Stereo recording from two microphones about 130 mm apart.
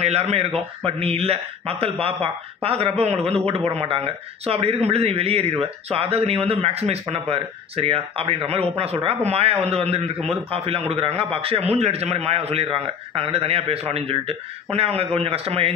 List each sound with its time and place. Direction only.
0.0 s a man's voice: 55° right (ahead or behind)